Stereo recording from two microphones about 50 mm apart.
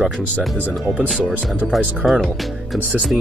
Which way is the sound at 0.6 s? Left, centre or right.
Right.